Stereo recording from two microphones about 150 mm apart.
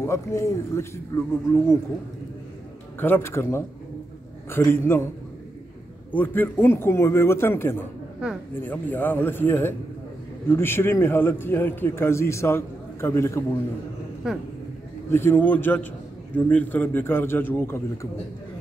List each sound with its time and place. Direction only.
0.0 s speech: 20° left (ahead or behind)
3.0 s a man's voice: 15° left (ahead or behind)
6.1 s a man's voice: 10° left (ahead or behind)
14.2 s speech: 5° right (ahead or behind)
15.0 s a man's voice: 15° left (ahead or behind)